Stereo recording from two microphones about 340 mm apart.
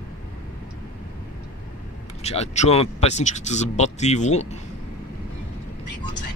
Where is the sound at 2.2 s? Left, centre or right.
Centre.